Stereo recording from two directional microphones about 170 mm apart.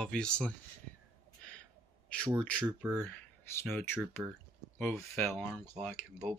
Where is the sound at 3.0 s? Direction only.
15° left (ahead or behind).